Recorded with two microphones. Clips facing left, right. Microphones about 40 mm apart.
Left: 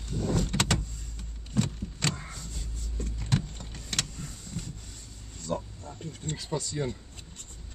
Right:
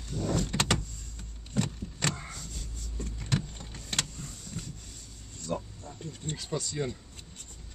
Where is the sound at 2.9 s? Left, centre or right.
Left.